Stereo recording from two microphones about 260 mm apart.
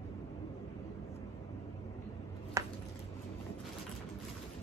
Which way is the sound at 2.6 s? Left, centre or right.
Centre.